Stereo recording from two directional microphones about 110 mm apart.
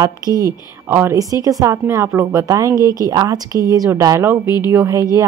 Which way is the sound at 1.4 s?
30° right (ahead or behind).